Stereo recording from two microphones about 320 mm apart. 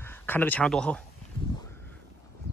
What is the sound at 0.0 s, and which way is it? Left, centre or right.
Speech, centre.